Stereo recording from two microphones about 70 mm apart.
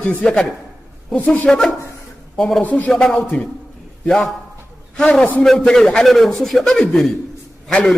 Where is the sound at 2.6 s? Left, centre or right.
Left.